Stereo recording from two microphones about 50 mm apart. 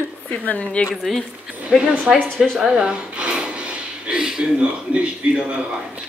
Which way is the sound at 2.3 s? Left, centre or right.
Centre.